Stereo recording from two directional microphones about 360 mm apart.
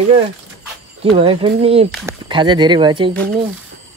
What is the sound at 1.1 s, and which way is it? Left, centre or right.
Speech, centre.